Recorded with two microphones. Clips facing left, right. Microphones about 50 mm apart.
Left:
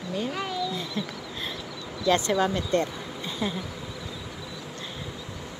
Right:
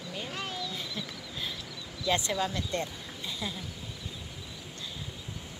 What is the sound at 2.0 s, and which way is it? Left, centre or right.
Speech, left.